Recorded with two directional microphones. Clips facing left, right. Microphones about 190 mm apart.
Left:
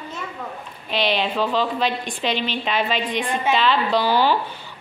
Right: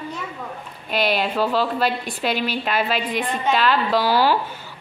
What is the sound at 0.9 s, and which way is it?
A woman's voice, 5° right (ahead or behind).